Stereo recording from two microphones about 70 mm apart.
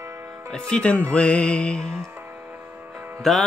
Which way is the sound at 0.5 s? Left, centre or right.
Centre.